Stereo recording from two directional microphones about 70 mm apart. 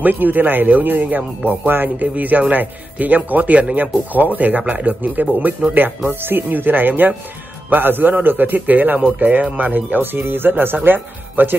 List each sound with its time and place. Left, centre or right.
0.0 s speech: right